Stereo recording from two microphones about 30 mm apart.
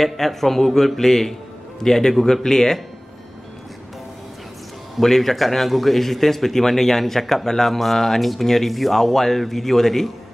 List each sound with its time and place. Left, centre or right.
0.0 s speech: centre
5.0 s speech: centre